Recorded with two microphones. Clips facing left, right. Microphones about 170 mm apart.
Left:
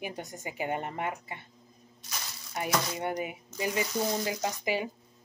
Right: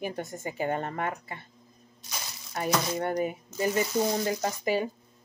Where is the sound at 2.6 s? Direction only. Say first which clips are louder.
Right 3 dB; 15° left (ahead or behind).